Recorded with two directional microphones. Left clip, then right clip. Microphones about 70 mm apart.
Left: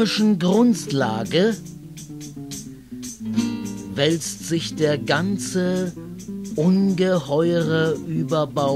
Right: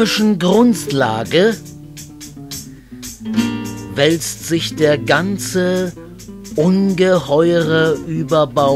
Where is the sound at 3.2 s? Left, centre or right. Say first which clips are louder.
Right 6 dB; right.